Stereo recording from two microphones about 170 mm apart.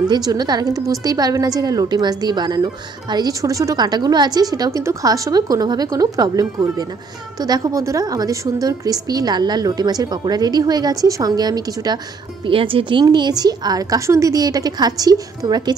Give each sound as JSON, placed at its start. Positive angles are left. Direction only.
{"t": 0.1, "sound": "a woman's voice", "side_deg": -25}